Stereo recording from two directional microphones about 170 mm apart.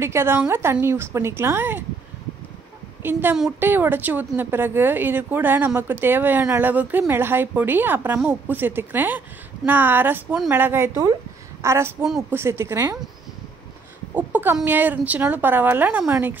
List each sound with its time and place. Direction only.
0.0 s speech: 15° right (ahead or behind)
3.0 s a woman's voice: 10° right (ahead or behind)
14.1 s speech: 10° right (ahead or behind)